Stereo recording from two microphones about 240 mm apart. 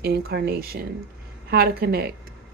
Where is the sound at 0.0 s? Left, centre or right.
Right.